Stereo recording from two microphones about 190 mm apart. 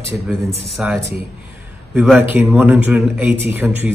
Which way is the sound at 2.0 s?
10° right (ahead or behind).